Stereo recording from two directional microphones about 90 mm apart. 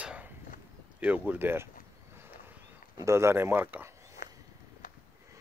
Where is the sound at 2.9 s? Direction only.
35° right (ahead or behind).